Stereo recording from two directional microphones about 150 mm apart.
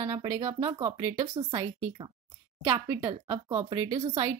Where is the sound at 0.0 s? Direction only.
25° right (ahead or behind).